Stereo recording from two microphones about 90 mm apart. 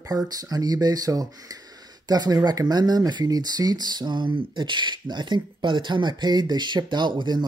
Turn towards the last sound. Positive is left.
turn(degrees=-55)  # may be behind; listen again after turning